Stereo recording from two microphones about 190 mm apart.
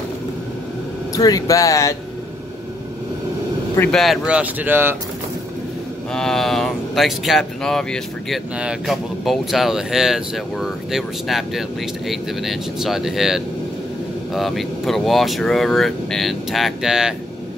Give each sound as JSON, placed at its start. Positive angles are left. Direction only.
{"t": 1.1, "sound": "speech", "side_deg": 20}
{"t": 3.7, "sound": "speech", "side_deg": 5}
{"t": 6.1, "sound": "speech", "side_deg": 0}